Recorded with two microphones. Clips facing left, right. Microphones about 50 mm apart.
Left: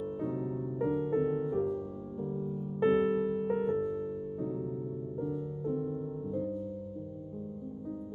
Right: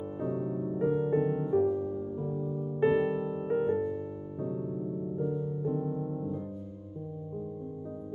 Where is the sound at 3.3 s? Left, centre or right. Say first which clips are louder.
Right 1 dB; centre.